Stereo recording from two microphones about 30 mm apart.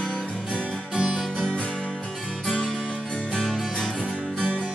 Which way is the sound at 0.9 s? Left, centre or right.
Right.